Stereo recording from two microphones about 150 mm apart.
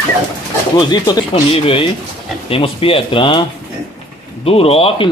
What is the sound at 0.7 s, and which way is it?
Speech, 30° left (ahead or behind).